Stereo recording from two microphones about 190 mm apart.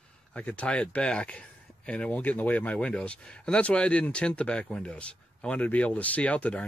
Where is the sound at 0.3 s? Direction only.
5° left (ahead or behind).